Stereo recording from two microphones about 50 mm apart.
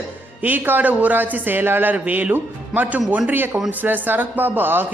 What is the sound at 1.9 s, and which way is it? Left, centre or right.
Speech, right.